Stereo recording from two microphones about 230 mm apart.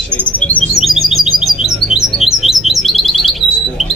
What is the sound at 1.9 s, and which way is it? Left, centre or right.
Bird, centre.